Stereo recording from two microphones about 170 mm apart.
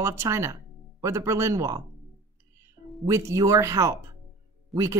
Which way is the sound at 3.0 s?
15° right (ahead or behind).